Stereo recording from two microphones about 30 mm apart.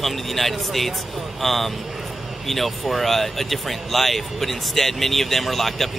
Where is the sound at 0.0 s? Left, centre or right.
Centre.